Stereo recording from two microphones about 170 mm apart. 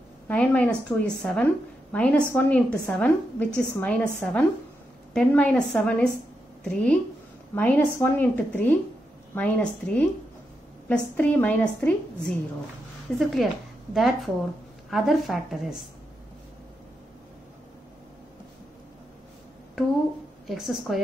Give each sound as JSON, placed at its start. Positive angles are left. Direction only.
{"t": 0.3, "sound": "a woman's voice", "side_deg": 5}
{"t": 20.4, "sound": "a woman's voice", "side_deg": 0}